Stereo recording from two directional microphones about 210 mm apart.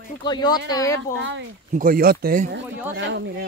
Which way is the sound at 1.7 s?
40° right (ahead or behind).